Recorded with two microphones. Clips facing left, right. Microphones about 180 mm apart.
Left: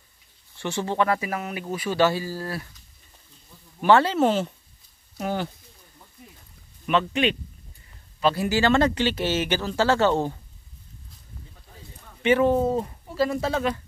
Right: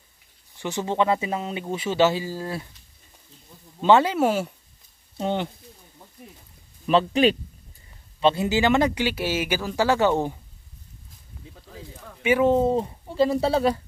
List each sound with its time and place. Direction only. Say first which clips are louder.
0.6 s speech: right 1 dB; 15° right (ahead or behind)
3.8 s speech: even; 15° right (ahead or behind)
5.1 s speech: right 2 dB; 25° right (ahead or behind)
6.9 s speech: right 4 dB; 30° right (ahead or behind)
8.2 s speech: right 1 dB; 25° right (ahead or behind)
11.7 s a sound: right 8 dB; 90° right
12.2 s speech: left 1 dB; 5° right (ahead or behind)
12.4 s speech: right 2 dB; 25° right (ahead or behind)